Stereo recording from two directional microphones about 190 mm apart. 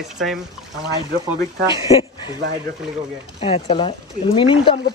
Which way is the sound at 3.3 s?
30° left (ahead or behind).